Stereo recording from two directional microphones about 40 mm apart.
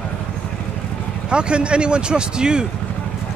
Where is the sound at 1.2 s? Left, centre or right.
Right.